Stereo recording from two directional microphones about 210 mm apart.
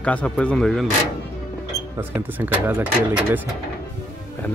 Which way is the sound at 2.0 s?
10° right (ahead or behind).